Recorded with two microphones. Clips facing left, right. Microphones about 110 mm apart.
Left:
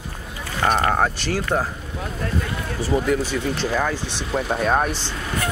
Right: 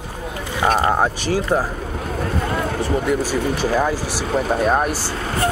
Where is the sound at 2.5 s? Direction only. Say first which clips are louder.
Right 4 dB; 60° right (ahead or behind).